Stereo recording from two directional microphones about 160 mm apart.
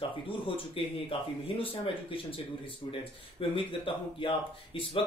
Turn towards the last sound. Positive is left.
turn(degrees=35)  # may be behind; listen again after turning